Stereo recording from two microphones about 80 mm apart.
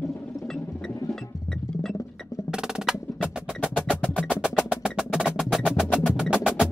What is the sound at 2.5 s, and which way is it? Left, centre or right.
Wood block, centre.